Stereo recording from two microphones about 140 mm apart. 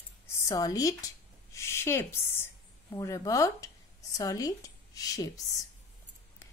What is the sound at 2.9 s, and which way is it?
Speech, 25° left (ahead or behind).